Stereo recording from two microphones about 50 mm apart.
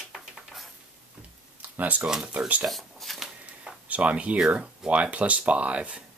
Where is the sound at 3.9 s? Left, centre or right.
Right.